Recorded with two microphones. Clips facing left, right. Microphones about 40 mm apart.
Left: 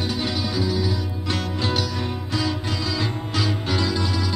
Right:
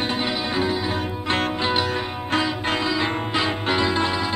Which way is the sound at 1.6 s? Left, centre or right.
Right.